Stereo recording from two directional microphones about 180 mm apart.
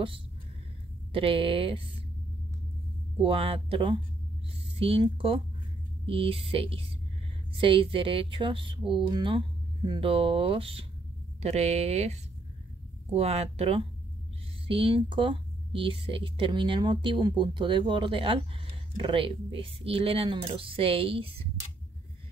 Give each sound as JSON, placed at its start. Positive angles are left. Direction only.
{"t": 1.1, "sound": "speech", "side_deg": -30}
{"t": 3.2, "sound": "speech", "side_deg": -30}